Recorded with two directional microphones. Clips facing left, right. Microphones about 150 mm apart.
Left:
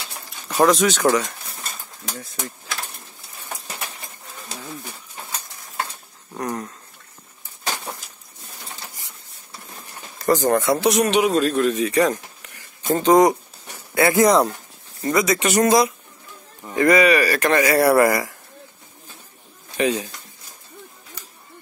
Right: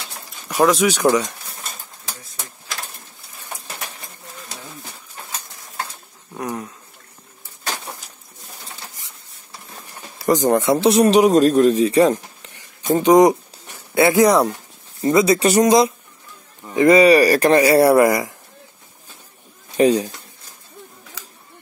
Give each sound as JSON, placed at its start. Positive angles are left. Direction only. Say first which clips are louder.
{"t": 0.7, "sound": "speech", "louder": "right 1 dB", "side_deg": 0}
{"t": 0.9, "sound": "speech", "louder": "right 2 dB", "side_deg": -15}
{"t": 6.3, "sound": "speech", "louder": "even", "side_deg": -5}
{"t": 10.1, "sound": "speech", "louder": "right 2 dB", "side_deg": -15}
{"t": 12.9, "sound": "speech", "louder": "right 3 dB", "side_deg": -15}
{"t": 15.3, "sound": "speech", "louder": "right 4 dB", "side_deg": -35}
{"t": 15.6, "sound": "speech", "louder": "right 3 dB", "side_deg": -20}
{"t": 19.8, "sound": "speech", "louder": "right 6 dB", "side_deg": -35}